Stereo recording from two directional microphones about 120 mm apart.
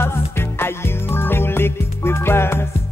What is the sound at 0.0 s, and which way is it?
Music, 20° left (ahead or behind).